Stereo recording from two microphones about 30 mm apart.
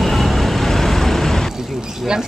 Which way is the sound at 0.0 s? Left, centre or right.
Centre.